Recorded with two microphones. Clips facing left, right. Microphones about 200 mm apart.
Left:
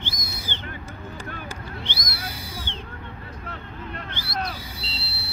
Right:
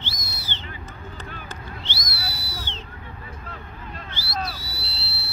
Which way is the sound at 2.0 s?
50° left (ahead or behind).